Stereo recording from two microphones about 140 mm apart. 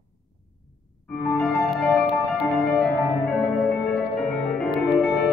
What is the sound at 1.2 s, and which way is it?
Music, 5° left (ahead or behind).